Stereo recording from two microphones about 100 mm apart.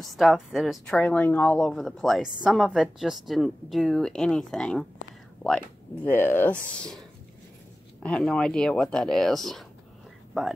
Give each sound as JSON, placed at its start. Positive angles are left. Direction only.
{"t": 0.1, "sound": "a woman's voice", "side_deg": 0}
{"t": 1.2, "sound": "a woman's voice", "side_deg": 15}
{"t": 6.0, "sound": "speech", "side_deg": 20}
{"t": 8.0, "sound": "a woman's voice", "side_deg": 5}